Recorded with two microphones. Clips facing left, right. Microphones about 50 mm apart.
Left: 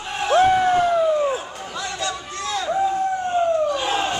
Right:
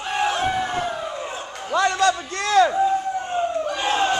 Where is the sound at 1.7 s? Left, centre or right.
Right.